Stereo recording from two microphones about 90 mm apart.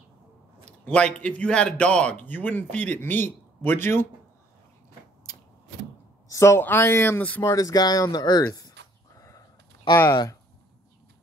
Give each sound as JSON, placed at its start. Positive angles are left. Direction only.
{"t": 0.8, "sound": "a man's voice", "side_deg": 10}
{"t": 6.2, "sound": "a woman's voice", "side_deg": 35}
{"t": 7.4, "sound": "speech", "side_deg": 45}
{"t": 8.5, "sound": "livestock", "side_deg": 40}